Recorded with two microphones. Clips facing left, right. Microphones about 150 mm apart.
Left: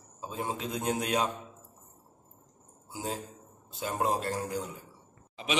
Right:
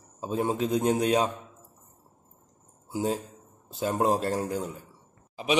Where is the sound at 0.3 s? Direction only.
35° right (ahead or behind).